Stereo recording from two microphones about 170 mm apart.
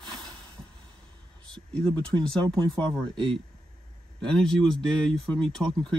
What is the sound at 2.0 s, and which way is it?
Speech, 5° left (ahead or behind).